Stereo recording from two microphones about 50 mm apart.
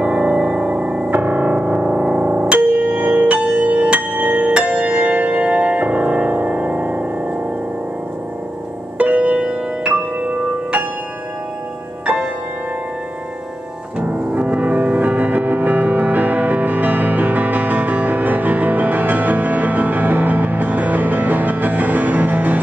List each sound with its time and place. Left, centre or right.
0.0 s music: right
2.5 s music: right
8.9 s music: right
13.9 s music: right